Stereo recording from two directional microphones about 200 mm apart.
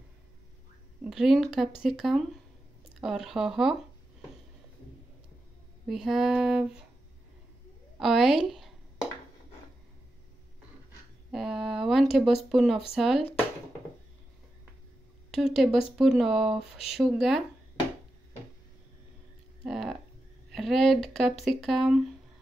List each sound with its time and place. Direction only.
1.0 s speech: centre (ahead or behind)
5.9 s speech: centre (ahead or behind)
8.0 s speech: centre (ahead or behind)
11.3 s speech: centre (ahead or behind)
15.3 s speech: centre (ahead or behind)
19.6 s a sound: centre (ahead or behind)
20.5 s speech: centre (ahead or behind)